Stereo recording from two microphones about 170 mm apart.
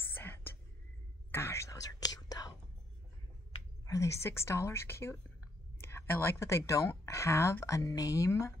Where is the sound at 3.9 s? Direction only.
20° left (ahead or behind).